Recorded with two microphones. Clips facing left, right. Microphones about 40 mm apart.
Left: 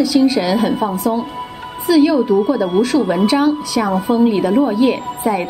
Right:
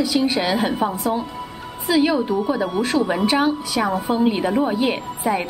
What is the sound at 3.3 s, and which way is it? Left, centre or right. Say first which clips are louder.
A woman's voice: left 4 dB; centre.